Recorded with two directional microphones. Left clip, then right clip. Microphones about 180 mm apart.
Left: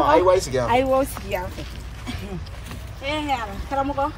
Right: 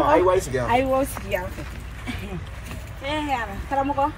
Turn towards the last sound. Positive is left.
turn(degrees=0)  # may be behind; listen again after turning